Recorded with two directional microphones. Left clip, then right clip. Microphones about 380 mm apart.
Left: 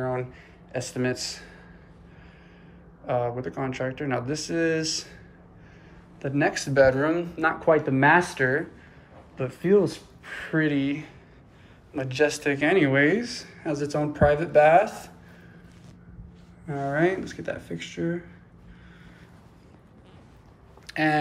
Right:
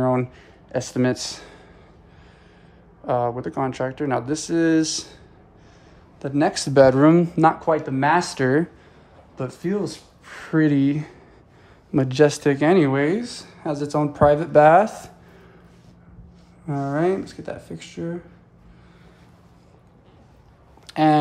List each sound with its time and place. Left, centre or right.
0.0 s speech: centre
3.1 s speech: centre
6.2 s speech: centre
16.6 s speech: right
17.1 s speech: right
17.4 s speech: centre
20.8 s a sound: centre